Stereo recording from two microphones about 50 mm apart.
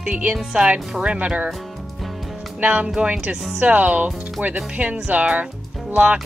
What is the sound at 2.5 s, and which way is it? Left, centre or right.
Speech, right.